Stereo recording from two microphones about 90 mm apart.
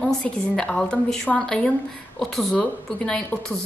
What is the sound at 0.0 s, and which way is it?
A woman's voice, 10° left (ahead or behind).